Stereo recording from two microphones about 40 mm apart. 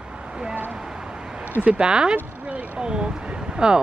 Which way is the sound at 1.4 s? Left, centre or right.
Right.